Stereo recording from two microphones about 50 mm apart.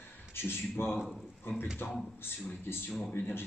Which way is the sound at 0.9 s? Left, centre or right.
Centre.